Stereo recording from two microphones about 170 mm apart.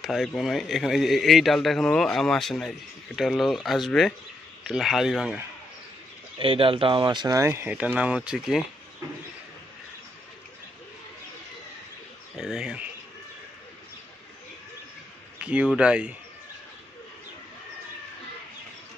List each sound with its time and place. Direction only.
0.0 s a man's voice: centre (ahead or behind)
6.3 s speech: 30° right (ahead or behind); by 8.6 s 5° right (ahead or behind)
12.4 s speech: 5° right (ahead or behind)
15.4 s speech: 5° right (ahead or behind)